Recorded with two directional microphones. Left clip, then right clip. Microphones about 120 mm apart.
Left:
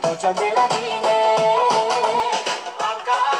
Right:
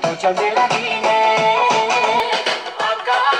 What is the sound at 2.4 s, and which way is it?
Music, 25° right (ahead or behind).